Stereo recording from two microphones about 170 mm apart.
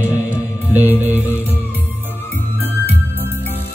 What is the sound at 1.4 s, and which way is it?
Music, 10° left (ahead or behind).